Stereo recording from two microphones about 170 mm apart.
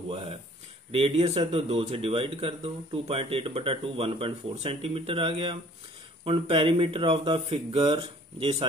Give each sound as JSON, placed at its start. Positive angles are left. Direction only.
{"t": 0.1, "sound": "speech", "side_deg": -35}